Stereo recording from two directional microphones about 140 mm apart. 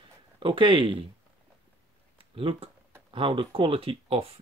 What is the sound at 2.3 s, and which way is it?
Speech, 40° right (ahead or behind).